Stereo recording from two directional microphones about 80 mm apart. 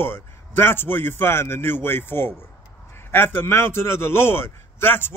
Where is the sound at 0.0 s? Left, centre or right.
Left.